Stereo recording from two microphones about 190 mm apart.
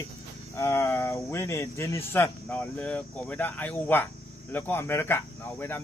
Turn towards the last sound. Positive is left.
turn(degrees=10)  # may be behind; listen again after turning